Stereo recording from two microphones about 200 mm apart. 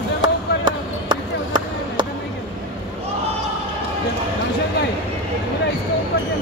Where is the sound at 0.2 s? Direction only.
25° right (ahead or behind).